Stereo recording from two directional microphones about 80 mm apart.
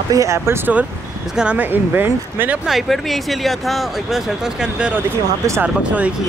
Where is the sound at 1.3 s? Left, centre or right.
Centre.